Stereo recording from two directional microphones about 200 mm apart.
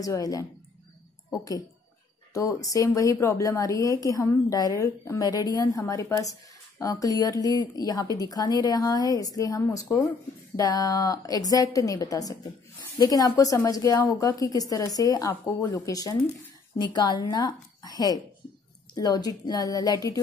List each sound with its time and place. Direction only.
0.0 s a woman's voice: 15° left (ahead or behind)